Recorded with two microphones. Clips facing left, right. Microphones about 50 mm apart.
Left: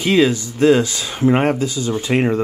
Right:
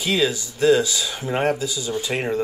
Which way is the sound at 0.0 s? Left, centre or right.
Left.